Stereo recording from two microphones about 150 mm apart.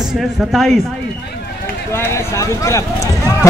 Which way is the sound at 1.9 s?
20° left (ahead or behind).